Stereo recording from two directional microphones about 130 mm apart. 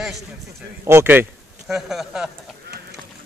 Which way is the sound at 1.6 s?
Centre (ahead or behind).